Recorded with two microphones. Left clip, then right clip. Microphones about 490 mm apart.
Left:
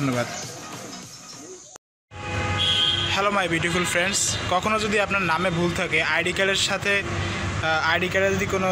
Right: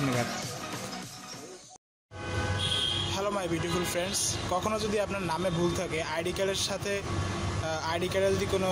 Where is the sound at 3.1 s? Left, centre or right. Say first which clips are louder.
Left 9 dB; right.